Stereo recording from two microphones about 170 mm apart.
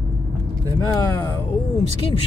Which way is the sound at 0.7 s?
25° left (ahead or behind).